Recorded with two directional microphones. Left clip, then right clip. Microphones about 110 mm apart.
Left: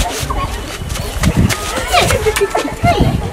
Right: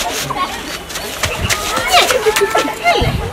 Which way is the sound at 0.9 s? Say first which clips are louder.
Even; 10° left (ahead or behind).